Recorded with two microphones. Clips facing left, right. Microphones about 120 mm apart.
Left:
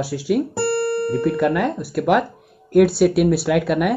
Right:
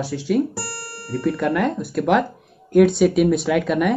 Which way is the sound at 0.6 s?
55° left (ahead or behind).